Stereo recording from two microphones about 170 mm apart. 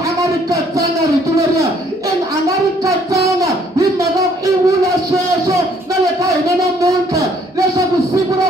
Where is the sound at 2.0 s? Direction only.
20° right (ahead or behind).